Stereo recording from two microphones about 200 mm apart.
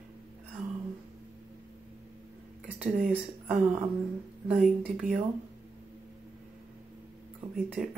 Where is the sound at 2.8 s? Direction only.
10° right (ahead or behind).